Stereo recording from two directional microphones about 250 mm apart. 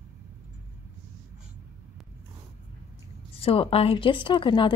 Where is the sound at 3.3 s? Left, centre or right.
Left.